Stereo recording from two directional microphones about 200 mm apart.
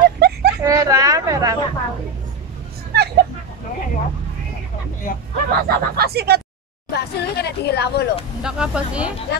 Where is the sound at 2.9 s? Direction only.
55° right (ahead or behind).